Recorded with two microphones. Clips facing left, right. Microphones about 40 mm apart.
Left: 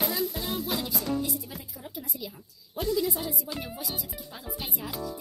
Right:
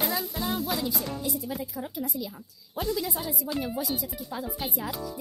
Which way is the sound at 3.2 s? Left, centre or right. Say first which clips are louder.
Right 3 dB; centre.